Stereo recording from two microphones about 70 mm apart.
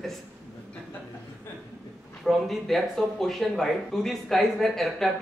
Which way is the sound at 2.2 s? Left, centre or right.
Centre.